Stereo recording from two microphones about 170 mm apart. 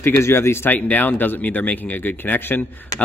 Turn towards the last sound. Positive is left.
turn(degrees=10)  # may be behind; listen again after turning